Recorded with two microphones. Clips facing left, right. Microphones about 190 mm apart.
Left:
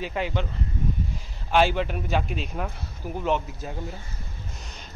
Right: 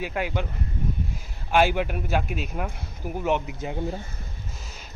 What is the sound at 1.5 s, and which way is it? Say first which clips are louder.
Speech: even; 10° right (ahead or behind).